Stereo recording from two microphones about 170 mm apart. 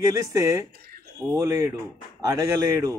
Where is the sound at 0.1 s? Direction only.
20° right (ahead or behind).